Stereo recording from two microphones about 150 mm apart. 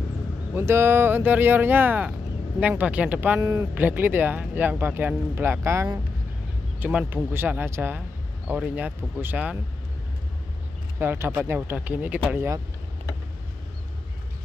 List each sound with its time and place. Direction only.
0.5 s speech: 15° right (ahead or behind)
11.0 s speech: 15° right (ahead or behind)